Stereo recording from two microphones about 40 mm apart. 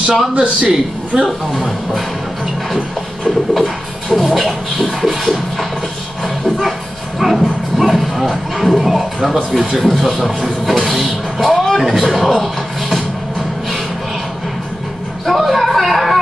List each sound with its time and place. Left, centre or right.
0.3 s a man's voice: right
1.6 s music: centre
3.3 s speech: centre
5.0 s scratching: centre
7.2 s music: centre
15.2 s a sound: centre